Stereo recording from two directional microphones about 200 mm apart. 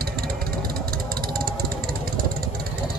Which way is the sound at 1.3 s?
50° right (ahead or behind).